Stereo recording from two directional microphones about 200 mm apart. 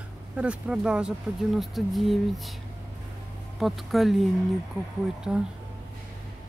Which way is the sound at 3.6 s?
Centre (ahead or behind).